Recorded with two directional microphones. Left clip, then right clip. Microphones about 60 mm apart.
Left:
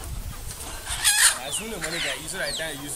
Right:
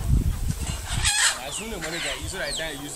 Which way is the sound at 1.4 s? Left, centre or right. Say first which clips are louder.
Left 1 dB; centre.